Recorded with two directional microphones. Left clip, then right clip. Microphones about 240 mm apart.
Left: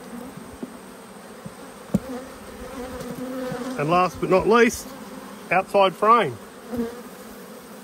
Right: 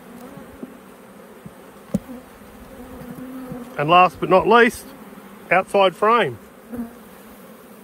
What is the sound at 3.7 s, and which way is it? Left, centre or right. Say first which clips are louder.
Speech: right 7 dB; right.